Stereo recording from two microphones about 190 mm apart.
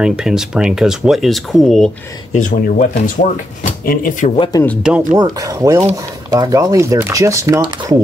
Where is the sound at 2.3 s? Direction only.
40° left (ahead or behind).